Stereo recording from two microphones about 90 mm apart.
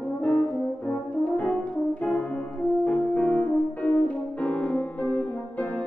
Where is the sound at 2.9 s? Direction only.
15° left (ahead or behind).